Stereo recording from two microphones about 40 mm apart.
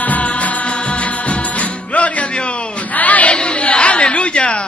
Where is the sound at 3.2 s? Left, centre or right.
Left.